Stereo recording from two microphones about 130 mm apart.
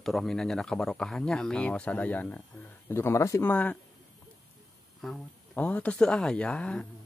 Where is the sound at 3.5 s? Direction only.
10° left (ahead or behind).